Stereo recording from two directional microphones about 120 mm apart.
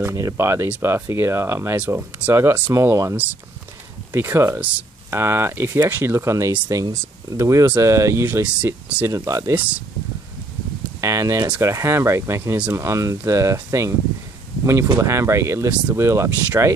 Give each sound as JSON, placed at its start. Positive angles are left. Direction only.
{"t": 0.0, "sound": "speech", "side_deg": -25}
{"t": 9.0, "sound": "speech", "side_deg": -25}
{"t": 11.0, "sound": "a sound", "side_deg": -25}
{"t": 11.6, "sound": "speech", "side_deg": -25}
{"t": 15.0, "sound": "speech", "side_deg": -25}